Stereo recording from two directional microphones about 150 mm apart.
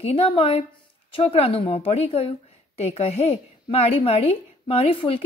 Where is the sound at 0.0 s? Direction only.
40° left (ahead or behind).